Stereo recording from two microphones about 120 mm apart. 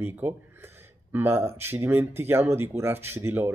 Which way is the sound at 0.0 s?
15° right (ahead or behind).